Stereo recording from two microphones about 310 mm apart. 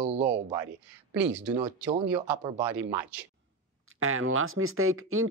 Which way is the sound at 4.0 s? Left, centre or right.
Right.